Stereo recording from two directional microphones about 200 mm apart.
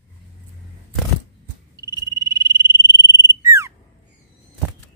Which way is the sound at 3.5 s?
15° right (ahead or behind).